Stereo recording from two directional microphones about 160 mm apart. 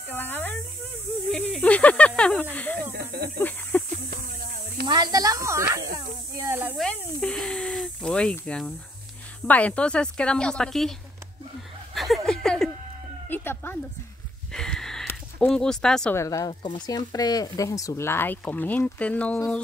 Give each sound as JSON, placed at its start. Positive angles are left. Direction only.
{"t": 0.1, "sound": "a sound", "side_deg": 10}
{"t": 1.3, "sound": "speech", "side_deg": 5}
{"t": 2.9, "sound": "snake", "side_deg": -80}
{"t": 3.3, "sound": "snake", "side_deg": 10}
{"t": 4.1, "sound": "a sound", "side_deg": -65}
{"t": 4.8, "sound": "snake", "side_deg": -25}
{"t": 6.8, "sound": "snake", "side_deg": 5}
{"t": 9.5, "sound": "speech", "side_deg": 10}
{"t": 11.9, "sound": "a sound", "side_deg": 0}
{"t": 13.3, "sound": "a sound", "side_deg": 15}
{"t": 15.0, "sound": "speech", "side_deg": 10}
{"t": 16.2, "sound": "speech", "side_deg": 20}